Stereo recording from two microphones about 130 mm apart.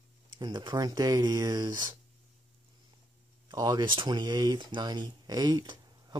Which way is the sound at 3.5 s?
30° right (ahead or behind).